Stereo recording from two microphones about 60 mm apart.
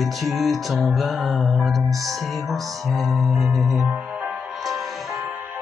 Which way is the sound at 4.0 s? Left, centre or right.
Centre.